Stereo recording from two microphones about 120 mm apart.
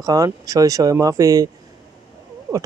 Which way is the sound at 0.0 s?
30° right (ahead or behind).